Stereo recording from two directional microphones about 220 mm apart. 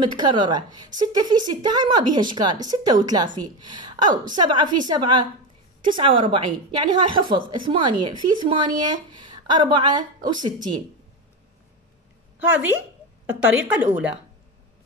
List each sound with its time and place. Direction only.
0.1 s a woman's voice: 20° right (ahead or behind)
12.4 s a woman's voice: 5° right (ahead or behind)